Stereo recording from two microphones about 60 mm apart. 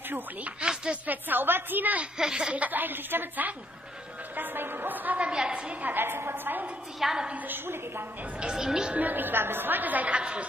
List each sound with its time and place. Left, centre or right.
0.1 s a woman's voice: right
1.0 s a woman's voice: right
2.1 s speech: centre
2.5 s a woman's voice: right
4.4 s a sound: right
5.3 s a woman's voice: centre; by 6.6 s right
7.0 s speech: centre
7.2 s a woman's voice: right
8.4 s speech: centre
8.9 s a woman's voice: right